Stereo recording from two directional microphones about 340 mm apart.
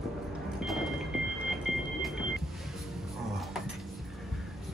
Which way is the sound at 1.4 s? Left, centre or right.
Centre.